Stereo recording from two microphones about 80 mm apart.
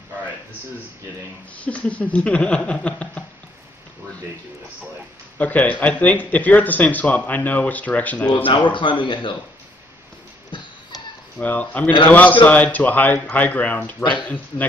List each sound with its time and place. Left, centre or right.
1.6 s a sound: centre
5.4 s speech: centre
8.7 s speech: left
11.3 s speech: centre